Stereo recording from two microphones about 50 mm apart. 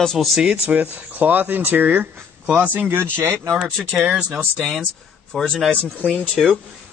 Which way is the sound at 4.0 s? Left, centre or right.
Right.